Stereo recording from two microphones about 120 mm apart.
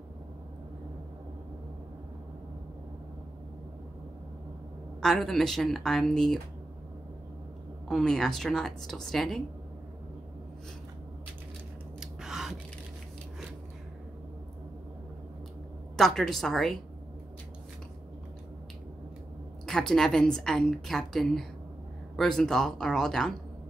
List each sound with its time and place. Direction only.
5.0 s a woman's voice: 5° left (ahead or behind)
7.9 s a woman's voice: 5° left (ahead or behind)
12.0 s scissors: 5° right (ahead or behind)
16.0 s a woman's voice: centre (ahead or behind)
19.6 s a woman's voice: 5° left (ahead or behind)